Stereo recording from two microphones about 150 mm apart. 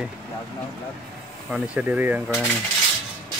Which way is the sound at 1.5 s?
5° right (ahead or behind).